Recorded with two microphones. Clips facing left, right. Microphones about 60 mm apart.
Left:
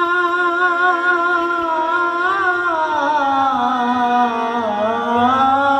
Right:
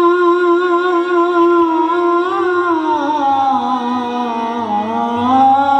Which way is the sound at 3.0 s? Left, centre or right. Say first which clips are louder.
Right 2 dB; left.